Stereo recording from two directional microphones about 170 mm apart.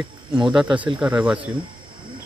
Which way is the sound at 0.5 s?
5° right (ahead or behind).